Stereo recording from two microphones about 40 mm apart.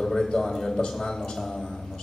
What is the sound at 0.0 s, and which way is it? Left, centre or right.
A man's voice, centre.